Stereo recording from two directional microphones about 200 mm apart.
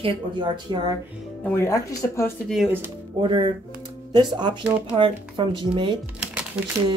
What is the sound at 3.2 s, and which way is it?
Speech, 25° right (ahead or behind).